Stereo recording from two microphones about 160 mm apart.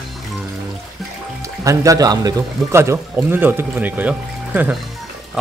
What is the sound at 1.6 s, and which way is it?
Speech, 20° right (ahead or behind).